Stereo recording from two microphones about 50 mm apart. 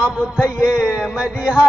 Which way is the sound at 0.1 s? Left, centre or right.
Centre.